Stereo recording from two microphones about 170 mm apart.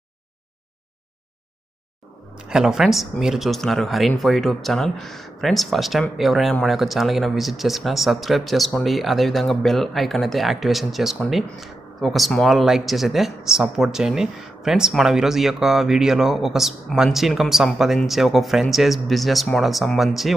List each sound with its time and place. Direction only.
2.3 s speech: 5° right (ahead or behind)